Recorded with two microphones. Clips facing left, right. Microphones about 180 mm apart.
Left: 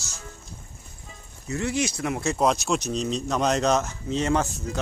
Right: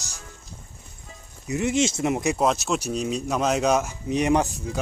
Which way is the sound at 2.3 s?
Centre (ahead or behind).